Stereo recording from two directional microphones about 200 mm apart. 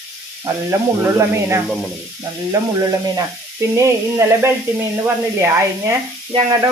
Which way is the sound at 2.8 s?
15° right (ahead or behind).